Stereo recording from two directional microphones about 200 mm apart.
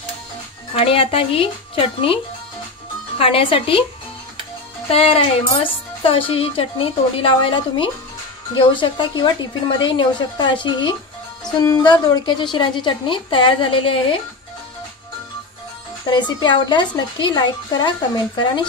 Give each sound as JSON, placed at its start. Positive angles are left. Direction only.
{"t": 0.7, "sound": "speech", "side_deg": 30}
{"t": 3.2, "sound": "speech", "side_deg": 30}
{"t": 4.9, "sound": "speech", "side_deg": 30}
{"t": 16.1, "sound": "speech", "side_deg": 20}